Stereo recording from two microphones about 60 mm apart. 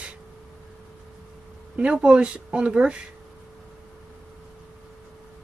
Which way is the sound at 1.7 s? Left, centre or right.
Centre.